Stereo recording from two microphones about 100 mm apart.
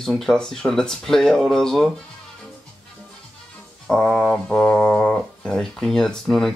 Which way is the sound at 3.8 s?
5° left (ahead or behind).